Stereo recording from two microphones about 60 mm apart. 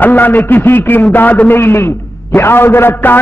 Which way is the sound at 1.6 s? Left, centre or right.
Left.